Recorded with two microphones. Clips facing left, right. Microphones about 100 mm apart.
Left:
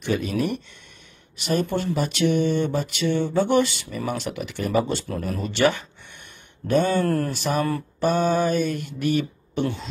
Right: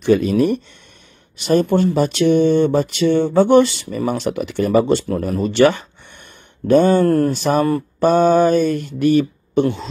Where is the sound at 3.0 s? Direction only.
65° right (ahead or behind).